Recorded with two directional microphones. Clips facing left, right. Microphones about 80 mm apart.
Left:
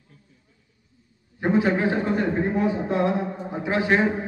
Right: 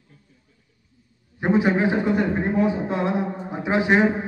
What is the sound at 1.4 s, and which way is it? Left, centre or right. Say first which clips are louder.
Speech: right 1 dB; centre.